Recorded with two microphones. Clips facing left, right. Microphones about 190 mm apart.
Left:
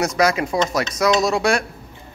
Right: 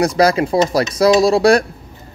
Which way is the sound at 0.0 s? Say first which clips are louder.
Right 5 dB; 35° right (ahead or behind).